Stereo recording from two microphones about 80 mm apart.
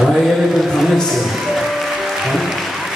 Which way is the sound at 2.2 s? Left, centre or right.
Centre.